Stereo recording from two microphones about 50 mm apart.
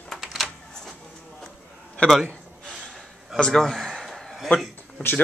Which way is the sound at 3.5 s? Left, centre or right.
Centre.